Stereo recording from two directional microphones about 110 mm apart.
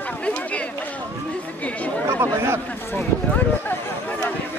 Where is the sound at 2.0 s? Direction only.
25° right (ahead or behind).